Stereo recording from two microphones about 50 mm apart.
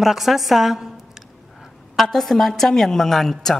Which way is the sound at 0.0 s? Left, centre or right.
Centre.